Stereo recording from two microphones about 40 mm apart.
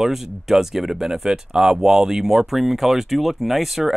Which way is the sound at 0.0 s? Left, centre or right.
Centre.